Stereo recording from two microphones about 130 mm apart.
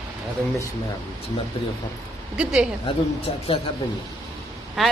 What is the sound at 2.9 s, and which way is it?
Speech, 45° left (ahead or behind).